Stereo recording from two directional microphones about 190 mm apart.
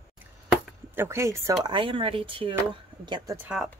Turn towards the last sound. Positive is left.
turn(degrees=-10)  # may be behind; listen again after turning